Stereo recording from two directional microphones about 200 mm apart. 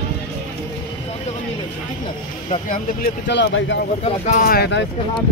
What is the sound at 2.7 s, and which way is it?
Speech, 55° left (ahead or behind).